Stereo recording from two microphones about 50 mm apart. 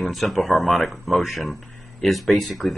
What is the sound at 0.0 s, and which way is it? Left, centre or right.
Speech, centre.